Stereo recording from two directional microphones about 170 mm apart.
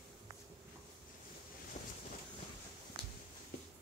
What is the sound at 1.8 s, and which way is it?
Boat, 40° left (ahead or behind).